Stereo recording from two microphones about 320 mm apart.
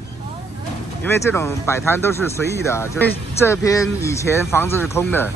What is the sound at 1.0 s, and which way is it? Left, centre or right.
Speech, centre.